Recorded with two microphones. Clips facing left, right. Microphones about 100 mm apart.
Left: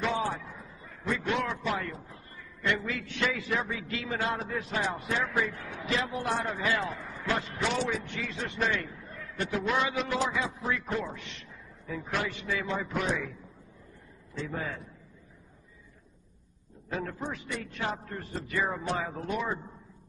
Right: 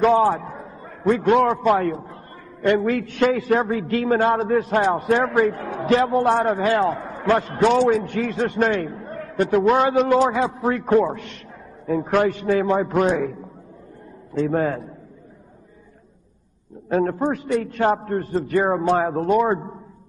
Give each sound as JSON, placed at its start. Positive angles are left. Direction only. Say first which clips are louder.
{"t": 0.0, "sound": "a man's voice", "louder": "right 14 dB", "side_deg": -55}
{"t": 16.9, "sound": "a man's voice", "louder": "right 14 dB", "side_deg": -50}